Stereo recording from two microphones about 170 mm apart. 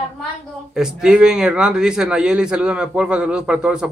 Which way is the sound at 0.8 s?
5° right (ahead or behind).